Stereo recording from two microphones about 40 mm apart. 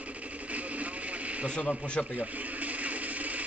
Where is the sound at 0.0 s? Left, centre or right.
Right.